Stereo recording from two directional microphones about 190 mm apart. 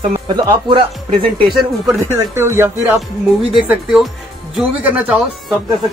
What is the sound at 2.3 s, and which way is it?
Speech, 10° right (ahead or behind).